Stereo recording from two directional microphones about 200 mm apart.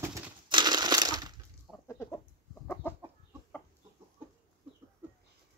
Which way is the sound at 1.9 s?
15° left (ahead or behind).